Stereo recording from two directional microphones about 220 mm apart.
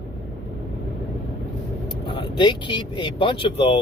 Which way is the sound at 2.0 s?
20° left (ahead or behind).